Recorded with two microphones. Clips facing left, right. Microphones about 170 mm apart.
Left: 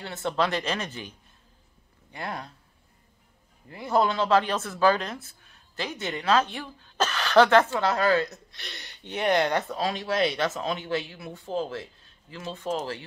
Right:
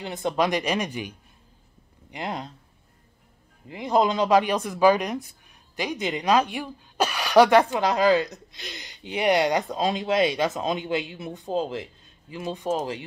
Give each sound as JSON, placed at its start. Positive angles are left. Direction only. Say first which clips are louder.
{"t": 0.0, "sound": "speech", "louder": "right 3 dB", "side_deg": -15}
{"t": 3.6, "sound": "speech", "louder": "right 2 dB", "side_deg": -15}